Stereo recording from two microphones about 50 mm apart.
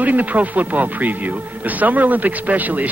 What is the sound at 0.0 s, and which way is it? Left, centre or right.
Speech, right.